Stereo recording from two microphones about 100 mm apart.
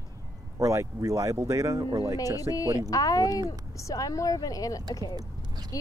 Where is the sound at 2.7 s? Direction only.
35° left (ahead or behind).